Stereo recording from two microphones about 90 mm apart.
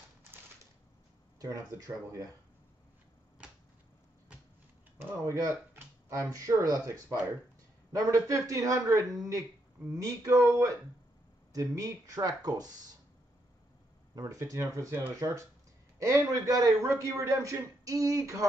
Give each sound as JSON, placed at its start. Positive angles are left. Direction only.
{"t": 1.4, "sound": "speech", "side_deg": -40}
{"t": 5.2, "sound": "speech", "side_deg": -35}
{"t": 14.1, "sound": "speech", "side_deg": -35}
{"t": 16.8, "sound": "speech", "side_deg": -30}